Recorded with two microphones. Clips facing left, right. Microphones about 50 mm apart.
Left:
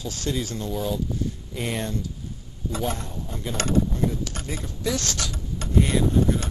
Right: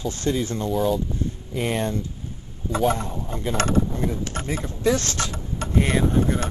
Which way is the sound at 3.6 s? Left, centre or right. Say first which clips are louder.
Even; right.